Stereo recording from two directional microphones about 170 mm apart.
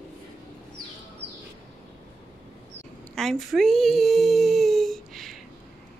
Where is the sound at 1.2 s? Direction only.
85° right.